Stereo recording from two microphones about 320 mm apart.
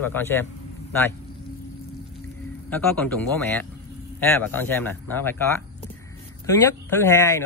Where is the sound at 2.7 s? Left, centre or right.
Centre.